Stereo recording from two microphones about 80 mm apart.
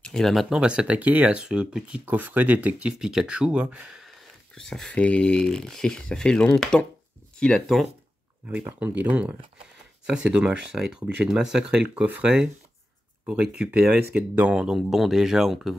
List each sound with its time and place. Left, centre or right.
0.0 s speech: centre
0.6 s speech: centre
2.0 s speech: right
3.0 s speech: centre
4.6 s speech: centre
8.7 s speech: centre